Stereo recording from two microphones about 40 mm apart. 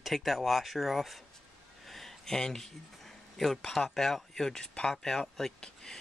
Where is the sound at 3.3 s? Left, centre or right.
Centre.